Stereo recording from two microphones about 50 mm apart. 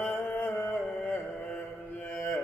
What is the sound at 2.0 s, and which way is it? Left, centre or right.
Mantra, centre.